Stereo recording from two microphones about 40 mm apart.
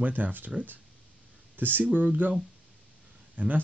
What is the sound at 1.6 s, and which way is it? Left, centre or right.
Speech, right.